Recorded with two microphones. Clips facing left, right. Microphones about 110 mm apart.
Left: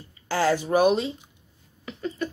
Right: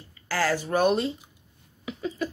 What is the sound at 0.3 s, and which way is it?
Speech, 20° left (ahead or behind).